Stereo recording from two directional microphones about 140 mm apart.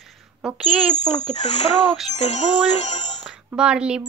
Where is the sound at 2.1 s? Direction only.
55° left (ahead or behind).